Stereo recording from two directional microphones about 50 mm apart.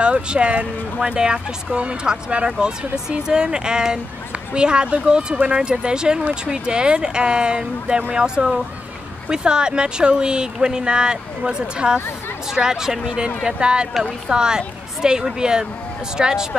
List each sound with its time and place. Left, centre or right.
0.0 s speech: right